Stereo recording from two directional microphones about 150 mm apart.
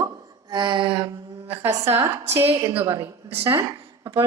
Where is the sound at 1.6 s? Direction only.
20° right (ahead or behind).